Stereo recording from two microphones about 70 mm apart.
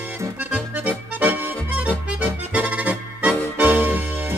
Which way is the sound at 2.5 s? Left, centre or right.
Centre.